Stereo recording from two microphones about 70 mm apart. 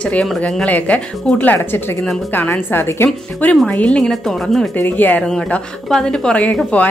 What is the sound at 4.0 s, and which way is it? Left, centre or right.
Speech, centre.